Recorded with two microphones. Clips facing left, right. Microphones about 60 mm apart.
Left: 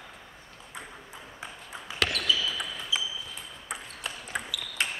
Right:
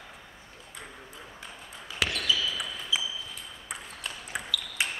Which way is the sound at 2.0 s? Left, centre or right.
Centre.